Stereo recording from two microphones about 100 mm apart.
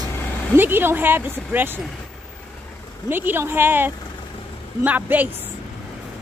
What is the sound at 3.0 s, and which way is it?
Speech, 20° right (ahead or behind).